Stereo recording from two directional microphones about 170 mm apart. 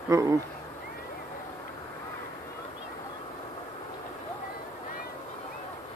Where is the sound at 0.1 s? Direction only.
20° right (ahead or behind).